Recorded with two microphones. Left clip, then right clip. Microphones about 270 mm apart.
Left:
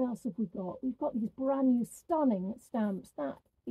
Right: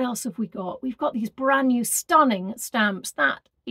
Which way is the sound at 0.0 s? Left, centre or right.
Right.